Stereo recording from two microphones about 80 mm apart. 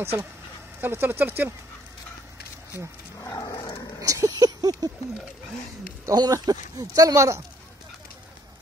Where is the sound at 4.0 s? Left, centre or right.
Right.